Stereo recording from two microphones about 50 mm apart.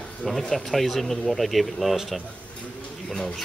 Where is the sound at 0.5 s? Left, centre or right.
Centre.